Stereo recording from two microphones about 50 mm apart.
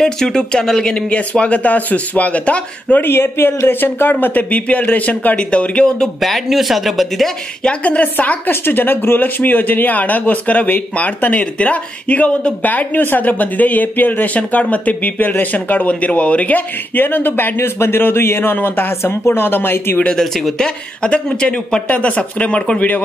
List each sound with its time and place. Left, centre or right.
0.0 s speech: centre
1.1 s speech: left
3.0 s speech: left
6.2 s speech: centre
7.6 s speech: left
8.5 s speech: left
12.6 s speech: left
17.6 s speech: left
20.5 s speech: centre
21.8 s speech: left
22.8 s speech: left